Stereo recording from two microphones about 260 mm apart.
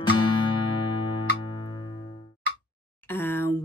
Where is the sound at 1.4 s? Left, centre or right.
Centre.